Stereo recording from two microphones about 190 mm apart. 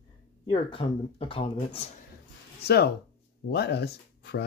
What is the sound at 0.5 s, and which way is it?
Speech, 30° left (ahead or behind).